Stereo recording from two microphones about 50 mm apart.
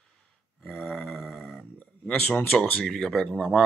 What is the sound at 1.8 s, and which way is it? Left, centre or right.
Speech, left.